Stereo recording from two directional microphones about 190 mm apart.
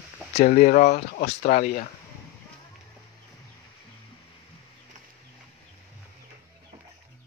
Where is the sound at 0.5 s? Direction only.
45° left (ahead or behind).